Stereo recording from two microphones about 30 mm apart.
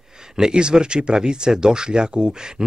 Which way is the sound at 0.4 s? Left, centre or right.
Right.